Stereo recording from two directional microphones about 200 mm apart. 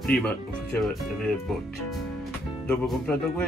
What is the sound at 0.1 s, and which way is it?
Speech, 45° left (ahead or behind).